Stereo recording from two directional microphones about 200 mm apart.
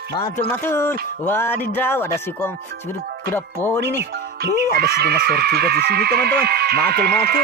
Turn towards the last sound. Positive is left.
turn(degrees=-50)  # may be behind; listen again after turning